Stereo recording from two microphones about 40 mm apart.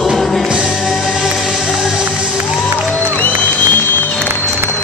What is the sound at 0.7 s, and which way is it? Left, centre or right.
Music, centre.